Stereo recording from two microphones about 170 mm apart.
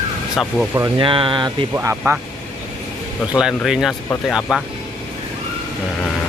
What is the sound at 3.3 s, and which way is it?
Speech, 5° right (ahead or behind).